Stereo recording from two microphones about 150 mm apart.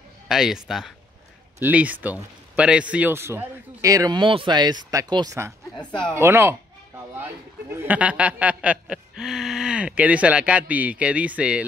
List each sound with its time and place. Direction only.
0.3 s a man's voice: 5° right (ahead or behind)
7.7 s a man's voice: 10° right (ahead or behind)